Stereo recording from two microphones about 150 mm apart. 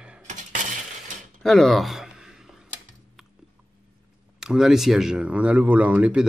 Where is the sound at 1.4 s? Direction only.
Centre (ahead or behind).